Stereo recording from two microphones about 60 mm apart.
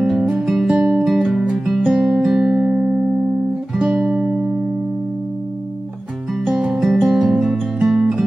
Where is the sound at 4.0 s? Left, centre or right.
Right.